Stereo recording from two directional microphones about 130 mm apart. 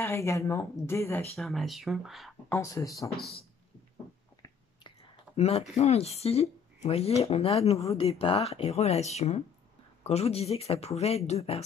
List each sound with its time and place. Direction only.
0.0 s speech: 20° left (ahead or behind)
1.3 s speech: centre (ahead or behind)
2.5 s speech: 25° left (ahead or behind)
5.3 s speech: 55° left (ahead or behind)